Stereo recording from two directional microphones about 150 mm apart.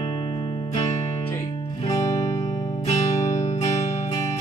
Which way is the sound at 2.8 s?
50° left (ahead or behind).